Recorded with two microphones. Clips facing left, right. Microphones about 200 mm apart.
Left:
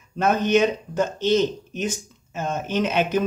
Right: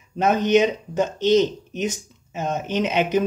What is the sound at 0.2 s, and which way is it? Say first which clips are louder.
Speech: right 1 dB; 15° right (ahead or behind).